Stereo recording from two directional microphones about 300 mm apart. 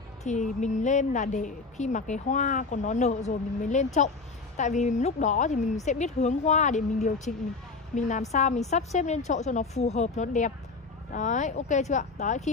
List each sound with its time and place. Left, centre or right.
0.3 s a woman's voice: left